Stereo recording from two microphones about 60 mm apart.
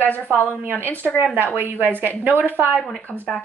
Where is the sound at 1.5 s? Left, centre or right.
Right.